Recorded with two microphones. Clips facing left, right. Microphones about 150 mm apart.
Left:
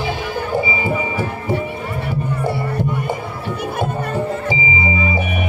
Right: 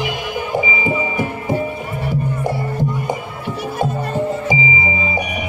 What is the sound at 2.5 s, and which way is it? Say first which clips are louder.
Music: left 1 dB; 70° left (ahead or behind).